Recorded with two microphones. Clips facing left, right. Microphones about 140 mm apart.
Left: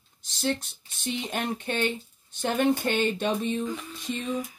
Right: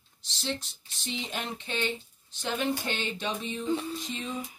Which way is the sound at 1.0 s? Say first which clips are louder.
Left 5 dB; 55° left (ahead or behind).